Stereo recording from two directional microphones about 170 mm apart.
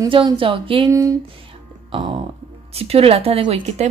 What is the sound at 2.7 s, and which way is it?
A woman's voice, 35° right (ahead or behind).